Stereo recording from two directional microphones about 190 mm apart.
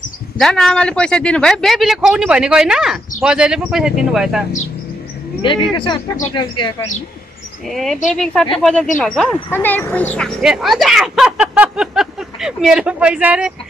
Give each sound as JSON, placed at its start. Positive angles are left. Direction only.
{"t": 0.4, "sound": "speech", "side_deg": 5}
{"t": 5.4, "sound": "speech", "side_deg": 25}
{"t": 7.7, "sound": "speech", "side_deg": 0}